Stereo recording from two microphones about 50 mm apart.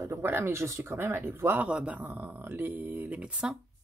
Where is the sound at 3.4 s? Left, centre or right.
Centre.